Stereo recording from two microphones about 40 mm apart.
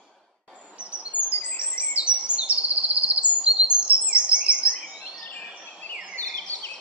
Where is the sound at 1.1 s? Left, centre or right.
Left.